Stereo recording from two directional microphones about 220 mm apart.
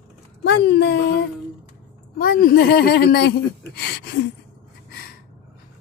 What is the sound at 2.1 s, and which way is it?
Speech, 40° left (ahead or behind).